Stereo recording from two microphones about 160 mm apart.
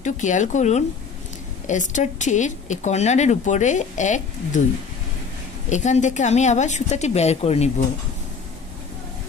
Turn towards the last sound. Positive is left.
turn(degrees=40)  # may be behind; listen again after turning